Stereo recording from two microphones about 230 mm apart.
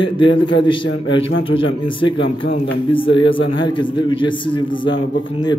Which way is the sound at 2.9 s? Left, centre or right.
Left.